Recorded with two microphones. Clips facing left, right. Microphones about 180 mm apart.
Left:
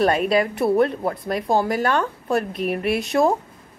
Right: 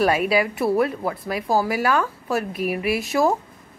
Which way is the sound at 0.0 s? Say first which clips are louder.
Left 1 dB; 5° right (ahead or behind).